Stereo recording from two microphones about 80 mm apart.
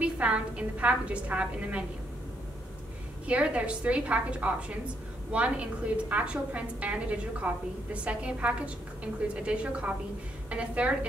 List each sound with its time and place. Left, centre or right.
0.0 s a woman's voice: centre
3.3 s a woman's voice: centre